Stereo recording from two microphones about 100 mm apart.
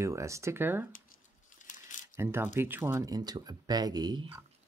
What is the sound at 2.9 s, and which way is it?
Speech, 35° right (ahead or behind).